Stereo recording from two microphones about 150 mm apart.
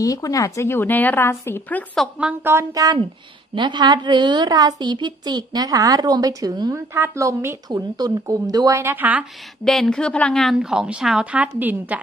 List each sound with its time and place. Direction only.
0.0 s a woman's voice: 25° left (ahead or behind)
2.1 s a woman's voice: 5° right (ahead or behind)
2.5 s a woman's voice: 25° right (ahead or behind)
9.7 s a woman's voice: 5° left (ahead or behind)